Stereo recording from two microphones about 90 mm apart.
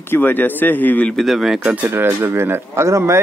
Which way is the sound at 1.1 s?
Centre (ahead or behind).